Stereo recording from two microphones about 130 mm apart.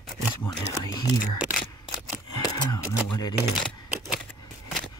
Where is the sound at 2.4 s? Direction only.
30° left (ahead or behind).